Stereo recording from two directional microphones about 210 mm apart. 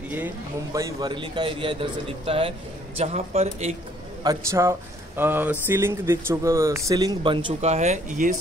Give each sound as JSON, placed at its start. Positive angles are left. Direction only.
{"t": 0.7, "sound": "a man's voice", "side_deg": -20}
{"t": 4.2, "sound": "speech", "side_deg": -15}